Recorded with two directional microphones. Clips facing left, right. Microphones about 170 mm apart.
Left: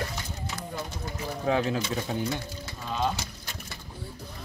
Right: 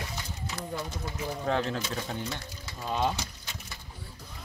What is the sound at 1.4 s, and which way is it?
Speech, 5° left (ahead or behind).